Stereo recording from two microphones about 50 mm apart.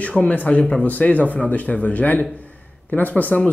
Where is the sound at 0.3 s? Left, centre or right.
Left.